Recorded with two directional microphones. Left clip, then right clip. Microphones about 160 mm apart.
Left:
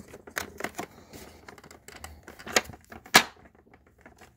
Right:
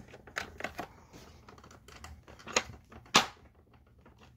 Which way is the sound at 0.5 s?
40° left (ahead or behind).